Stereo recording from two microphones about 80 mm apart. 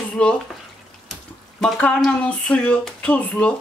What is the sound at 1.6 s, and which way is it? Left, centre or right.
Speech, centre.